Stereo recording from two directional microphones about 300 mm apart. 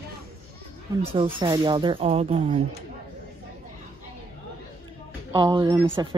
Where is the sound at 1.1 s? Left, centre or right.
Centre.